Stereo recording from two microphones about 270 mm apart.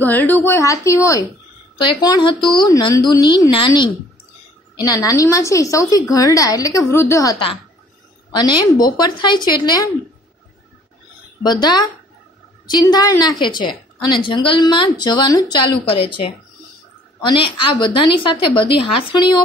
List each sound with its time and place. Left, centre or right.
0.0 s a woman's voice: centre
11.4 s a woman's voice: centre